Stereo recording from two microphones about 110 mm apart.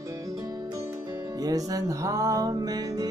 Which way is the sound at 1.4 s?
35° right (ahead or behind).